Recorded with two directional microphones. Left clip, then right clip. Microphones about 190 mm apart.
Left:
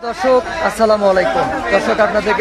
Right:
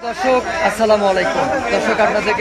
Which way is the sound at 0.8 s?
45° left (ahead or behind).